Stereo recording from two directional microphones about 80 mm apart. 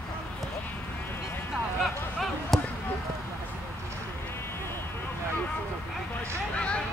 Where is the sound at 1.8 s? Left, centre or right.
Centre.